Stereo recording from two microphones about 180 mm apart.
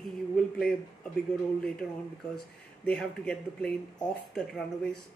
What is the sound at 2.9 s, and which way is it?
Speech, 5° left (ahead or behind).